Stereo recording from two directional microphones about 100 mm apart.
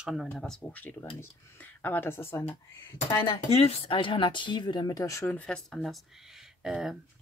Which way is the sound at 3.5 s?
75° left (ahead or behind).